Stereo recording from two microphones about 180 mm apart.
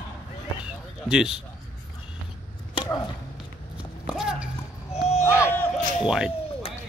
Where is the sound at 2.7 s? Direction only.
20° left (ahead or behind).